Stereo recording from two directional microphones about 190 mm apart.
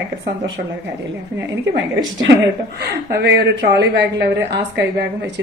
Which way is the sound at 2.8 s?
60° right (ahead or behind).